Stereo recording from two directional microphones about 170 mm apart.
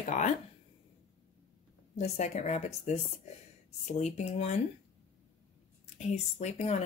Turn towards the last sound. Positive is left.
turn(degrees=40)  # may be behind; listen again after turning